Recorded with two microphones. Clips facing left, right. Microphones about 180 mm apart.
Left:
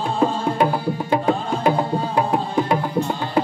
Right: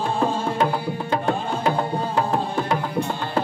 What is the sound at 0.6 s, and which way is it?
Music, 10° left (ahead or behind).